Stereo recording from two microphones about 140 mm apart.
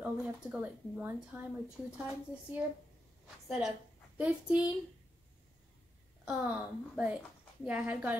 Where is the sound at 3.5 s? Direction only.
5° right (ahead or behind).